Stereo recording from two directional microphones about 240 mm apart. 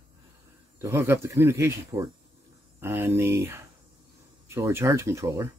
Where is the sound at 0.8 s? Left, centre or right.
Centre.